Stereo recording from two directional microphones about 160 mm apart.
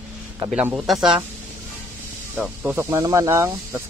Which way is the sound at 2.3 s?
10° right (ahead or behind).